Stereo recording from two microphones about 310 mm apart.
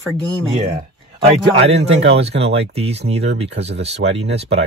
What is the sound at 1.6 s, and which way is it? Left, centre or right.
Speech, centre.